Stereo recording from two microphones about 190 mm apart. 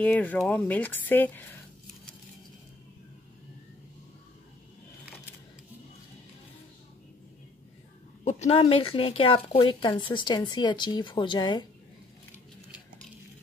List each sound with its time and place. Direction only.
0.0 s speech: 10° left (ahead or behind)
8.2 s speech: 35° left (ahead or behind)